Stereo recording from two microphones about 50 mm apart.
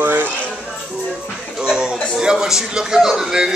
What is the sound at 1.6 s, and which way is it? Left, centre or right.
A man's voice, centre.